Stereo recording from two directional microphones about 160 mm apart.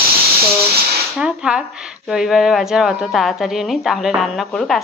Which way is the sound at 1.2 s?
5° right (ahead or behind).